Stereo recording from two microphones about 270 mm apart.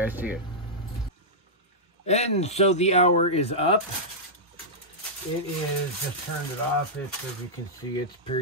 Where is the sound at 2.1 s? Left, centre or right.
Left.